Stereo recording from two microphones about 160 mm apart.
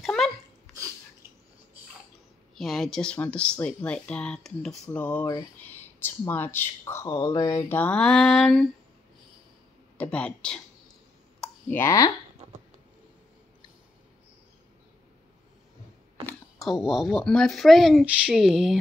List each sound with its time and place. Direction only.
0.0 s a sound: centre (ahead or behind)
2.5 s speech: centre (ahead or behind)
9.9 s speech: 5° left (ahead or behind)
16.5 s speech: centre (ahead or behind)